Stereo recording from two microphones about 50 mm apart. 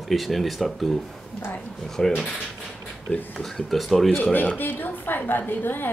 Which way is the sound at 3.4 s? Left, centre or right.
Centre.